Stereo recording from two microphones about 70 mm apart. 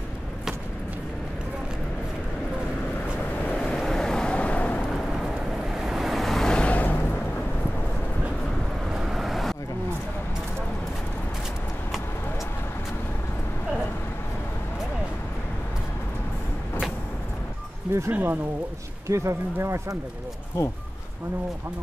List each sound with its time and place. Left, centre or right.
3.5 s vehicle: centre
4.8 s vehicle: centre
6.5 s a sound: centre
8.9 s vehicle: centre
18.1 s speech: right
19.0 s speech: right
20.6 s speech: left